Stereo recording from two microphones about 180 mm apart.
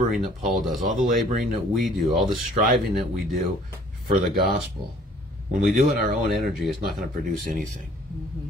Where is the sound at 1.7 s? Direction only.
Centre (ahead or behind).